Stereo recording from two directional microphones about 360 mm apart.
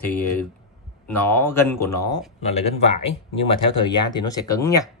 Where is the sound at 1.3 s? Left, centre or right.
Centre.